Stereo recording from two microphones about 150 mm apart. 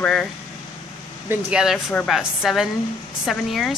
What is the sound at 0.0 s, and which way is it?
Speech, 5° left (ahead or behind).